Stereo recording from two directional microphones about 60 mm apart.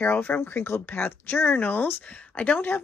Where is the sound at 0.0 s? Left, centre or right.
Left.